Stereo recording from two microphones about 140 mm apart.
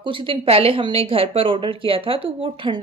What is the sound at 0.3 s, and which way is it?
A woman's voice, 40° right (ahead or behind).